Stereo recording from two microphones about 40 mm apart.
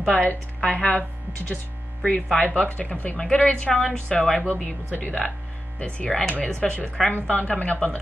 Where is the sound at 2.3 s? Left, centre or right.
Left.